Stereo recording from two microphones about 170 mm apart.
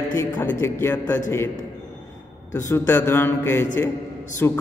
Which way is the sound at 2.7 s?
15° left (ahead or behind).